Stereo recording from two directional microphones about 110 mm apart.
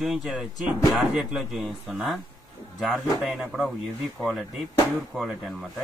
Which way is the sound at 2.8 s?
Centre (ahead or behind).